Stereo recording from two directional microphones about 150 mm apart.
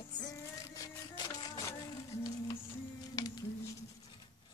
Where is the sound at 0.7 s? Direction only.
25° left (ahead or behind).